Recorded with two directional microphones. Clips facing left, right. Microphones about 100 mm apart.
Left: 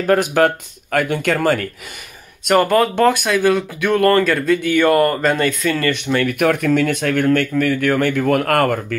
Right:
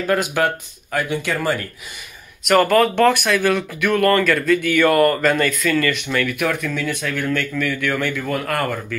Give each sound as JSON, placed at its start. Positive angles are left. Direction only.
{"t": 0.0, "sound": "speech", "side_deg": 40}
{"t": 0.9, "sound": "speech", "side_deg": 55}
{"t": 2.4, "sound": "speech", "side_deg": 25}
{"t": 6.2, "sound": "speech", "side_deg": 60}